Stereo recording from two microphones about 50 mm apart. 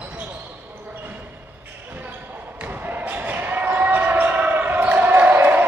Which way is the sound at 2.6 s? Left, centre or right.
Right.